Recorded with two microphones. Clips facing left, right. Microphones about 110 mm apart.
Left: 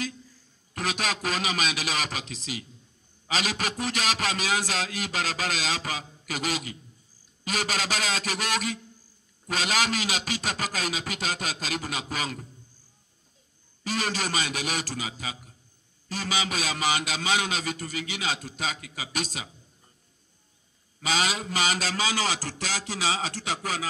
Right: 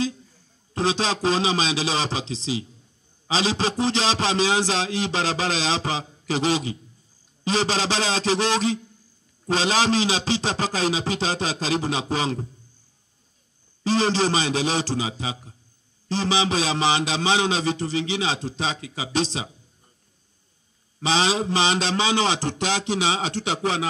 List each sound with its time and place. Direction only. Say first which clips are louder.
0.7 s a man's voice: right 7 dB; 30° right (ahead or behind)
13.8 s a man's voice: right 9 dB; 30° right (ahead or behind)
21.0 s a man's voice: right 6 dB; 25° right (ahead or behind)